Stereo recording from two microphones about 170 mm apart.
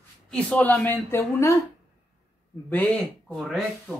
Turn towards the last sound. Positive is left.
turn(degrees=5)  # may be behind; listen again after turning